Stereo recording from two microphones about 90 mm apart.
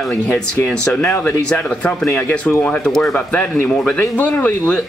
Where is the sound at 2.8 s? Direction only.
5° left (ahead or behind).